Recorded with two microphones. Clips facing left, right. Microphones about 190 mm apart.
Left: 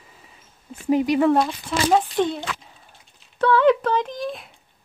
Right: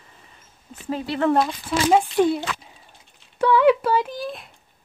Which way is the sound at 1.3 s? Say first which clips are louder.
Left 1 dB; 5° right (ahead or behind).